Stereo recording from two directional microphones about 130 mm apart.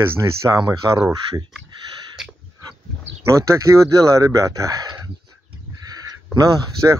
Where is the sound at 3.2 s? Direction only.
25° right (ahead or behind).